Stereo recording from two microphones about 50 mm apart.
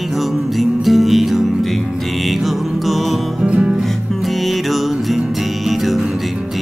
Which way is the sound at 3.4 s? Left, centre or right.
Right.